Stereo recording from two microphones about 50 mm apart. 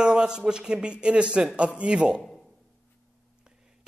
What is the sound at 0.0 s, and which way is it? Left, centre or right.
A man's voice, centre.